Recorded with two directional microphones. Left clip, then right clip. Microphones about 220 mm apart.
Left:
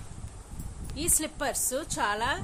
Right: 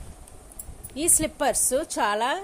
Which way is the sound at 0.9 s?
20° right (ahead or behind).